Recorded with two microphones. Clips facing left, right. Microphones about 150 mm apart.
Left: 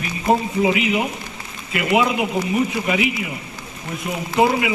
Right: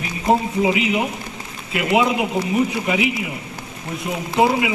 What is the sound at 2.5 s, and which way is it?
A man's voice, 20° right (ahead or behind).